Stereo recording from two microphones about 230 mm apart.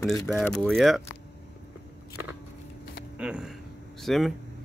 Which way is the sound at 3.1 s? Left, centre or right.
Centre.